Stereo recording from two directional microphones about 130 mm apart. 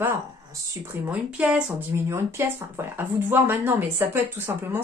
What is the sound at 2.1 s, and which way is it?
Speech, 20° right (ahead or behind).